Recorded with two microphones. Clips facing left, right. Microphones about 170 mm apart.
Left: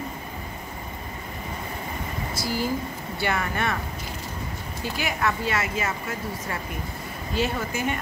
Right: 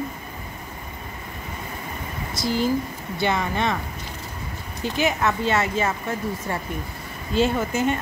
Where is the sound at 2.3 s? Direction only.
20° right (ahead or behind).